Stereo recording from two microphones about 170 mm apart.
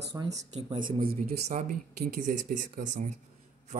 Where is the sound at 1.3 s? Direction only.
45° right (ahead or behind).